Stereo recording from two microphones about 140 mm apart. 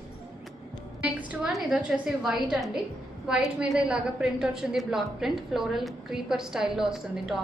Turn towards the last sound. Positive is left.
turn(degrees=-5)  # may be behind; listen again after turning